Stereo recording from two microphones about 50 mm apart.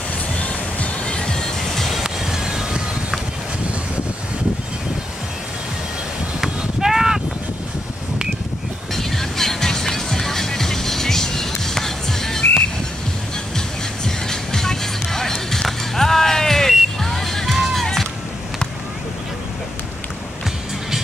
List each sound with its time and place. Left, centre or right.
0.4 s music: left; by 2.0 s centre
2.0 s vehicle: centre
6.4 s clip-clop: centre
8.9 s music: centre
14.0 s music: centre